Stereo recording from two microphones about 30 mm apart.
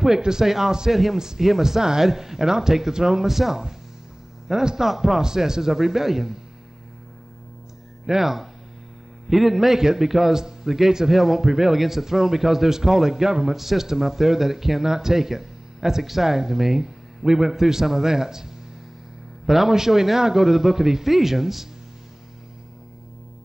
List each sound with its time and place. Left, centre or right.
0.2 s a man's voice: centre
3.3 s a man's voice: centre
8.1 s a man's voice: centre
19.4 s a man's voice: centre
19.7 s a man's voice: centre